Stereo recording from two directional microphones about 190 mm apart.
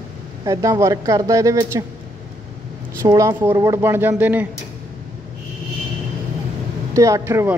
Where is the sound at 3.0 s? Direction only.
15° right (ahead or behind).